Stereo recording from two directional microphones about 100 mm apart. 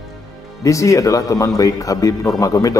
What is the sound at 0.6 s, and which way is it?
A man's voice, 30° left (ahead or behind).